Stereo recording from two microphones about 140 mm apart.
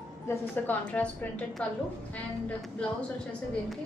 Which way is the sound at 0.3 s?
10° left (ahead or behind).